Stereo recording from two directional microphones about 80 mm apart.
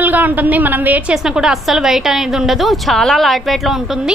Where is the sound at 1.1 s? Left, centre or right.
Centre.